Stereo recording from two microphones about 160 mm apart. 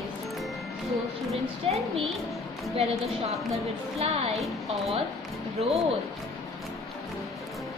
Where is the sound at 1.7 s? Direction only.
40° right (ahead or behind).